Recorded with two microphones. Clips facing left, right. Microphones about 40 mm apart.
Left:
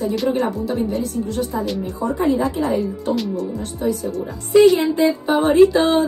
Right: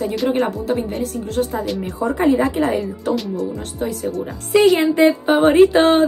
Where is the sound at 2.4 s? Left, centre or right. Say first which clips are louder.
Right 2 dB; right.